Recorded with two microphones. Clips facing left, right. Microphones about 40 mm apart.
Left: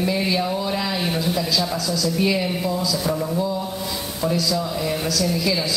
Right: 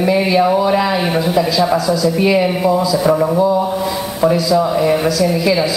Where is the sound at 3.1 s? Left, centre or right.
Right.